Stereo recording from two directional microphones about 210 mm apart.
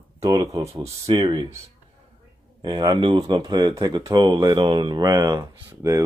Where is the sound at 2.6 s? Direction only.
20° right (ahead or behind).